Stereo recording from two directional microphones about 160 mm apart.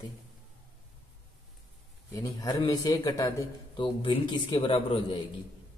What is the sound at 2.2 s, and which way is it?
A man's voice, 20° left (ahead or behind).